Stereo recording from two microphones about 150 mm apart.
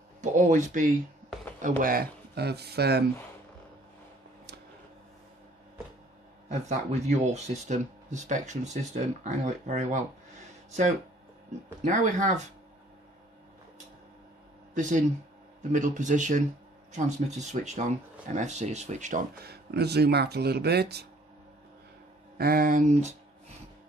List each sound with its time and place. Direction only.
0.2 s speech: 60° right (ahead or behind)
1.6 s speech: 70° right (ahead or behind); by 3.1 s 90° right
6.6 s speech: 50° right (ahead or behind)
11.8 s speech: 60° right (ahead or behind)
14.7 s speech: 55° right (ahead or behind)
19.3 s speech: 90° right
22.4 s speech: 80° right; by 23.1 s 50° right (ahead or behind)